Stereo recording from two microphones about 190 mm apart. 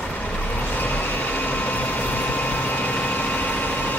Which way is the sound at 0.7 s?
10° left (ahead or behind).